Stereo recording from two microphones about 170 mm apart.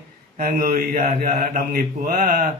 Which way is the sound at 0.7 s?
50° right (ahead or behind).